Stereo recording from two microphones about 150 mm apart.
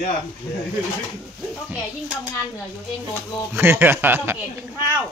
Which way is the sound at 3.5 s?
15° right (ahead or behind).